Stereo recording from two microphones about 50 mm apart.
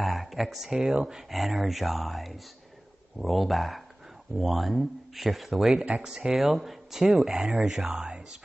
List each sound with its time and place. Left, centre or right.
0.0 s speech: centre
0.7 s speech: right
1.0 s speech: centre
5.9 s speech: centre
6.2 s speech: centre